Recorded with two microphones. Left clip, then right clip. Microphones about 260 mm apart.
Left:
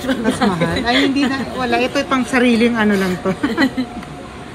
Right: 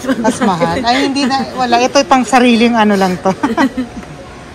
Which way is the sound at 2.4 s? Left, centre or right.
Right.